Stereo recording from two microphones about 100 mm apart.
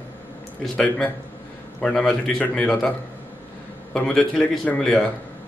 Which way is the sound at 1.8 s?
5° left (ahead or behind).